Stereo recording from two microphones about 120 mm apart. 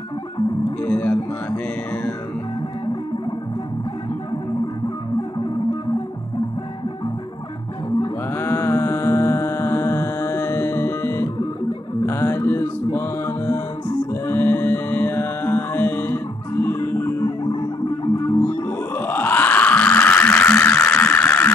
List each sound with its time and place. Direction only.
0.7 s music: 15° left (ahead or behind)
8.3 s music: 20° left (ahead or behind)
17.4 s music: 40° left (ahead or behind)
18.9 s a sound: 15° left (ahead or behind)